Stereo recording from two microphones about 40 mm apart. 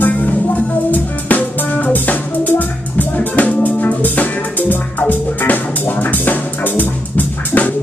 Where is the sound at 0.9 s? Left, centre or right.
Left.